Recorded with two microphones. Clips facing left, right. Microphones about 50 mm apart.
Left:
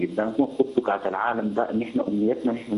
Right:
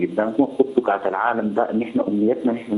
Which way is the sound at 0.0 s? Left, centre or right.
Centre.